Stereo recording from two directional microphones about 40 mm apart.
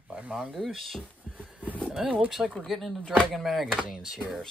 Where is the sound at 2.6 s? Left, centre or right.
Centre.